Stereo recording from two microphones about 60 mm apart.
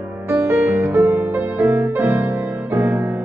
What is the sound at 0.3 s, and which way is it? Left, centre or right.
Music, right.